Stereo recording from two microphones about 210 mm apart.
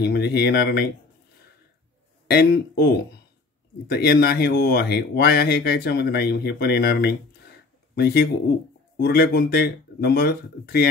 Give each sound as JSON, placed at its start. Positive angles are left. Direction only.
{"t": 0.0, "sound": "speech", "side_deg": 50}
{"t": 2.2, "sound": "speech", "side_deg": 50}